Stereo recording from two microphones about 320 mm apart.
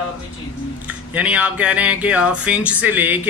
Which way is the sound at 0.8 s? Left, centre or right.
Centre.